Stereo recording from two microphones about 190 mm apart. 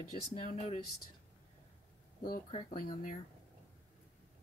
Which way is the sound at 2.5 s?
25° left (ahead or behind).